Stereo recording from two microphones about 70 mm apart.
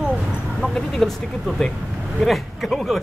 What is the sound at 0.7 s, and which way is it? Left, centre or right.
Speech, centre.